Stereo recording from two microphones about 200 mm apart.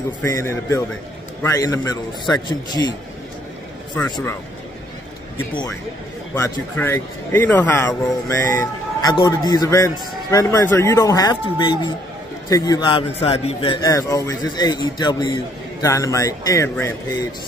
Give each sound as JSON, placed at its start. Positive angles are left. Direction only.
{"t": 0.2, "sound": "a man's voice", "side_deg": 15}
{"t": 3.9, "sound": "a man's voice", "side_deg": 10}
{"t": 6.3, "sound": "a man's voice", "side_deg": 15}
{"t": 13.7, "sound": "a man's voice", "side_deg": 15}